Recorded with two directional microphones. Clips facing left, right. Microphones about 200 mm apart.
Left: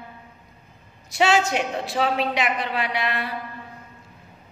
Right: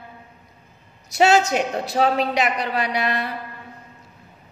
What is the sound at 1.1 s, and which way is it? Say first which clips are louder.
A woman's voice: right 3 dB; 40° right (ahead or behind).